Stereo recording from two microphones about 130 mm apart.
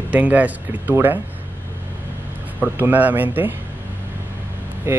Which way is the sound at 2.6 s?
15° right (ahead or behind).